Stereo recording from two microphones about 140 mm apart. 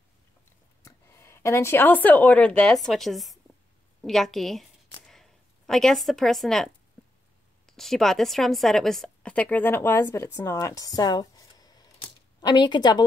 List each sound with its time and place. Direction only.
0.8 s speech: 20° left (ahead or behind); by 3.3 s centre (ahead or behind)
4.0 s a sound: centre (ahead or behind)
7.6 s a woman's voice: centre (ahead or behind); by 13.0 s 30° left (ahead or behind)